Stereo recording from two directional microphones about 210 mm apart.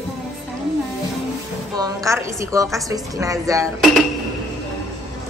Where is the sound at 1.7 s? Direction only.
15° right (ahead or behind).